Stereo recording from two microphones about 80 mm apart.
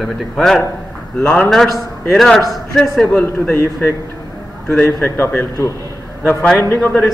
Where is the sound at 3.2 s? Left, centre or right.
Left.